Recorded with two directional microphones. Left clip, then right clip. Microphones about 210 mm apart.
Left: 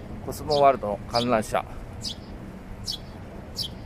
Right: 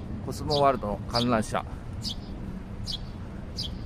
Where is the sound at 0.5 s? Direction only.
Centre (ahead or behind).